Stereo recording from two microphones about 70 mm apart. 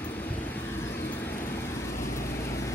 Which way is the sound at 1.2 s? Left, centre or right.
Left.